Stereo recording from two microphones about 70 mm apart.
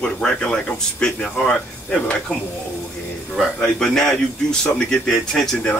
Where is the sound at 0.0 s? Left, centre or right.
Centre.